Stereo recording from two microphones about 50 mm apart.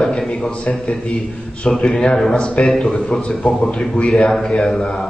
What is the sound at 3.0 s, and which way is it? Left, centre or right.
A man's voice, centre.